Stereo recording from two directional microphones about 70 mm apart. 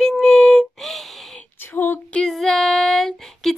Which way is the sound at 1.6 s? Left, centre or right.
Left.